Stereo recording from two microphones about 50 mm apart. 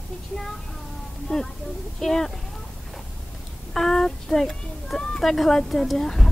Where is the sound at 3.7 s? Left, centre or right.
Centre.